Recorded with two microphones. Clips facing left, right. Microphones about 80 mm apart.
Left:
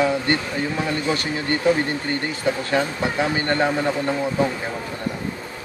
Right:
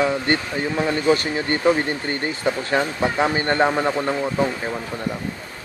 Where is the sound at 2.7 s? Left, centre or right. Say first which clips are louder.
Right 3 dB; right.